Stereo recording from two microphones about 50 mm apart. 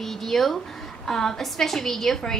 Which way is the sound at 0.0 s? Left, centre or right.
Centre.